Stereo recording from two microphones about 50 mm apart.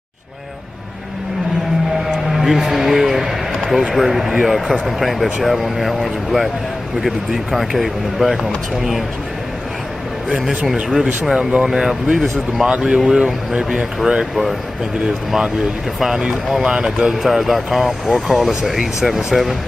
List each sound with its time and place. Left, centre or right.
2.0 s music: centre
3.7 s speech: centre
10.7 s speech: centre
11.3 s speech: centre
16.0 s speech: centre
17.0 s speech: centre